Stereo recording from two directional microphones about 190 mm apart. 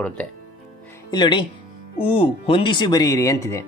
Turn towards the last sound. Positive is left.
turn(degrees=15)  # may be behind; listen again after turning